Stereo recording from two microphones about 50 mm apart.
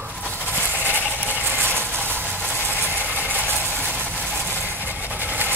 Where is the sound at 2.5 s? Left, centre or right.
Right.